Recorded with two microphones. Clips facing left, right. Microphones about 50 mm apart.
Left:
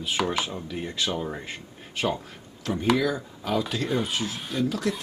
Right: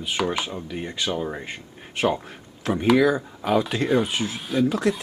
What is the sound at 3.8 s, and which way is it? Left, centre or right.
Speech, centre.